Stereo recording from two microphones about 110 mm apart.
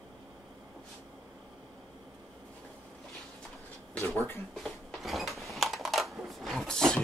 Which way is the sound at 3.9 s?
20° left (ahead or behind).